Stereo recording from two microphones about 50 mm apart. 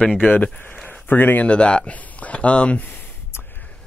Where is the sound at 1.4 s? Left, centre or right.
Left.